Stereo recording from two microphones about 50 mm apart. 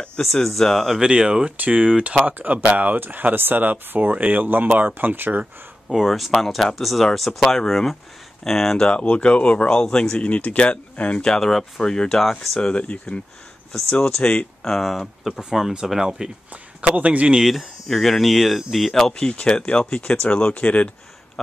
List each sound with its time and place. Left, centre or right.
0.2 s speech: centre
0.9 s speech: centre
1.6 s speech: right
5.9 s speech: centre
8.8 s speech: left
10.1 s speech: left
11.2 s speech: centre
12.6 s speech: left; by 16.3 s centre
16.8 s a man's voice: right
17.4 s speech: centre; by 20.9 s left